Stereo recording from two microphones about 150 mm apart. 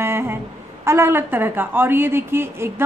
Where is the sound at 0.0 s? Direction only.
15° right (ahead or behind).